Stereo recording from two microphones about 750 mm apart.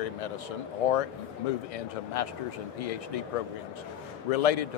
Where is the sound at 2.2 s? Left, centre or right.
Left.